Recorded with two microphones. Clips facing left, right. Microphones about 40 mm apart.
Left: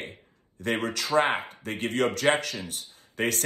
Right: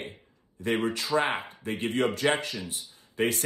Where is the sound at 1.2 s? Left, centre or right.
Left.